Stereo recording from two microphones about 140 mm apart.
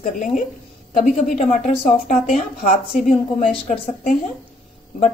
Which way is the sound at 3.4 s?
70° left (ahead or behind).